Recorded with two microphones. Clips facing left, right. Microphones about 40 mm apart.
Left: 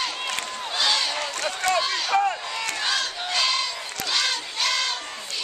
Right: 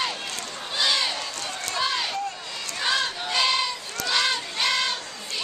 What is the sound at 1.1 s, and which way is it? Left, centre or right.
Run, left.